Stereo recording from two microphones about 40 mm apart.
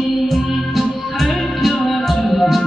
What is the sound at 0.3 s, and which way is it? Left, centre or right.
Music, centre.